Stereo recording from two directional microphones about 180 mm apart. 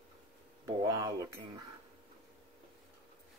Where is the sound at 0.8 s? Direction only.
20° right (ahead or behind).